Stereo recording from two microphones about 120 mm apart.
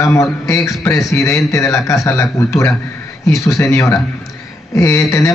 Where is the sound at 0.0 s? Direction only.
25° left (ahead or behind).